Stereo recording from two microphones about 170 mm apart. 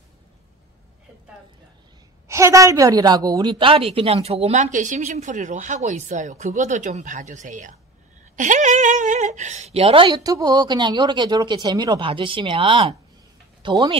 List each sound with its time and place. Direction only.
2.2 s a woman's voice: 15° right (ahead or behind)